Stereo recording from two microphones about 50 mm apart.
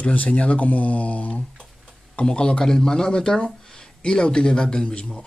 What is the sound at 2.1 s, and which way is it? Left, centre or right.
A man's voice, centre.